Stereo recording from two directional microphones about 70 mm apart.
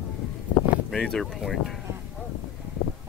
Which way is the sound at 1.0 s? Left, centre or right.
Centre.